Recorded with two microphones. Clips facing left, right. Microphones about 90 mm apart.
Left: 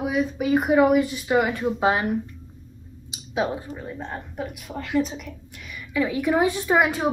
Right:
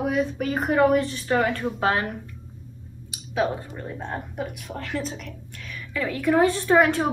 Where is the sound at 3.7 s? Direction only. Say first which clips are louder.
Right 1 dB; centre (ahead or behind).